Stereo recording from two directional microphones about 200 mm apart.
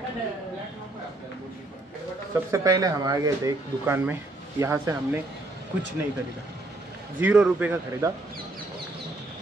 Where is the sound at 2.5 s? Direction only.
20° right (ahead or behind).